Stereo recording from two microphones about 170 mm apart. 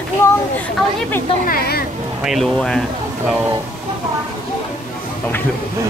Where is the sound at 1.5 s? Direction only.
60° left (ahead or behind).